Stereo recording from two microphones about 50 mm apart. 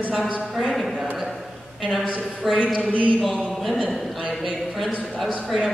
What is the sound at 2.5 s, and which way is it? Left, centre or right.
Speech, left.